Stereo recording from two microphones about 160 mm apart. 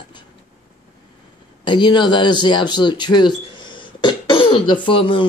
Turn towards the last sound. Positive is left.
turn(degrees=30)  # may be behind; listen again after turning